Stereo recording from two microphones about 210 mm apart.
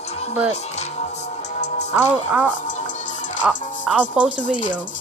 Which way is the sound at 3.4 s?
5° right (ahead or behind).